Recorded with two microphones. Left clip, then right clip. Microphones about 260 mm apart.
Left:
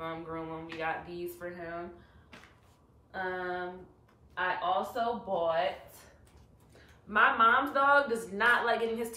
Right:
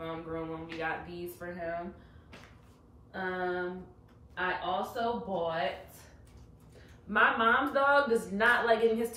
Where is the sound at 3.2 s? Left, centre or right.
Centre.